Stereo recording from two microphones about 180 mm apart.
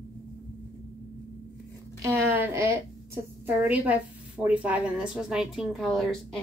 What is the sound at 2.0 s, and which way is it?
A woman's voice, 15° right (ahead or behind).